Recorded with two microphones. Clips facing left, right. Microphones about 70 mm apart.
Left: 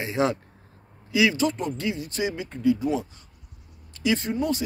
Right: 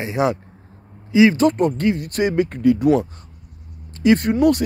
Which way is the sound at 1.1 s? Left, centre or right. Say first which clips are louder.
Right 8 dB; right.